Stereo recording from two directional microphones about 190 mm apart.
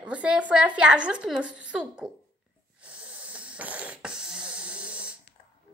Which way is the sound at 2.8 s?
5° right (ahead or behind).